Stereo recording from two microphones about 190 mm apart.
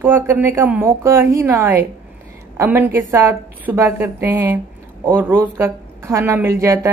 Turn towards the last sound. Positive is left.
turn(degrees=-15)  # may be behind; listen again after turning